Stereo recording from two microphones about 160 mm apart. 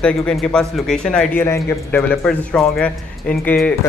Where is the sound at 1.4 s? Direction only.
15° left (ahead or behind).